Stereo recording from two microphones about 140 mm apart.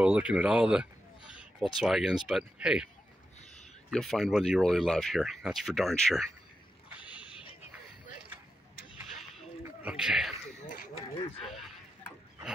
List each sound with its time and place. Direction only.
0.0 s speech: 10° right (ahead or behind)
1.3 s a sound: 5° right (ahead or behind)
1.8 s speech: centre (ahead or behind)
3.9 s speech: 5° left (ahead or behind)
7.2 s wild animals: 40° left (ahead or behind)
9.8 s speech: 5° right (ahead or behind)